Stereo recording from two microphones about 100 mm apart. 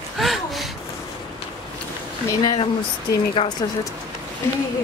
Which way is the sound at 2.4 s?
45° left (ahead or behind).